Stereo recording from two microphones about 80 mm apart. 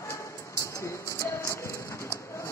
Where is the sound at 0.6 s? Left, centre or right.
Left.